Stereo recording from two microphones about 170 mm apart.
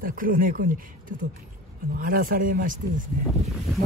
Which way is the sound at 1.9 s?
55° right (ahead or behind).